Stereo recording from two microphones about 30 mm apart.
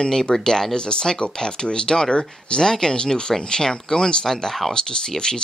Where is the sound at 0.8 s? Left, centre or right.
Left.